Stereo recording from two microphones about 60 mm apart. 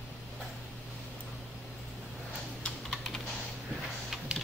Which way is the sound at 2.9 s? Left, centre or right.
Centre.